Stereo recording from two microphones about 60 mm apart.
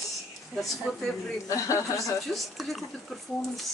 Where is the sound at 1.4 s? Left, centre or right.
Left.